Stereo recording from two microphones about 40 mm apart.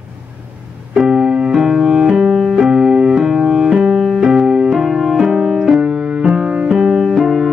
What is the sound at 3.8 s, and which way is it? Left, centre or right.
Piano, right.